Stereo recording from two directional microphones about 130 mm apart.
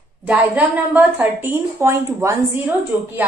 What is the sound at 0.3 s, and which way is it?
A woman's voice, 10° right (ahead or behind).